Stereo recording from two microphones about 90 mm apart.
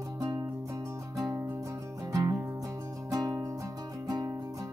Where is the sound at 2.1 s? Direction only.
35° right (ahead or behind).